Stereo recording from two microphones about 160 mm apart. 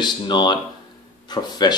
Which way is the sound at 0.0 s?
25° left (ahead or behind).